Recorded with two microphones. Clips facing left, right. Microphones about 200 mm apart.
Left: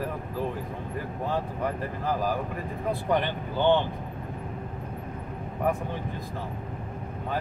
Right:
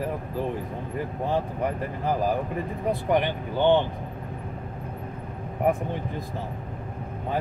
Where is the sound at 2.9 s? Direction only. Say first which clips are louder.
Right 2 dB; 15° right (ahead or behind).